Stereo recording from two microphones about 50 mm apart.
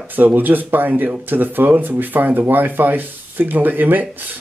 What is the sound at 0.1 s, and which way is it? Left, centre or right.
Speech, right.